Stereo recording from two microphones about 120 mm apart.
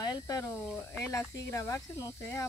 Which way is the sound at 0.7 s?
20° left (ahead or behind).